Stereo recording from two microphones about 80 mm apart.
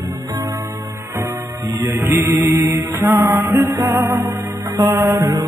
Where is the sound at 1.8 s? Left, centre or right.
Right.